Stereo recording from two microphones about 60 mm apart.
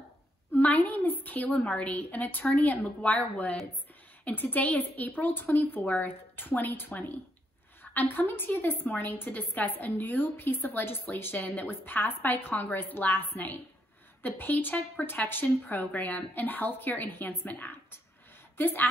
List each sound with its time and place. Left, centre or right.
0.6 s a woman's voice: left